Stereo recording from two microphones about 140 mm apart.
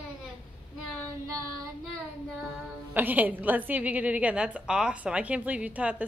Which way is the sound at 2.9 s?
10° right (ahead or behind).